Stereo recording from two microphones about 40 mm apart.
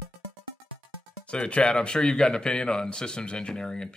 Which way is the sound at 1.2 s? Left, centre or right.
Left.